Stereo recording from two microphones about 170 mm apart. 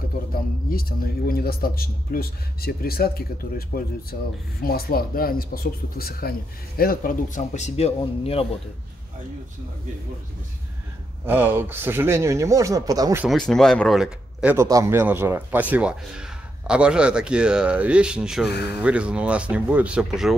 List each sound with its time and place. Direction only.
0.3 s speech: 60° left (ahead or behind); by 8.5 s 35° left (ahead or behind)
11.2 s speech: 10° right (ahead or behind)
13.2 s speech: centre (ahead or behind)
18.5 s speech: 75° left (ahead or behind)
18.8 s speech: 5° right (ahead or behind)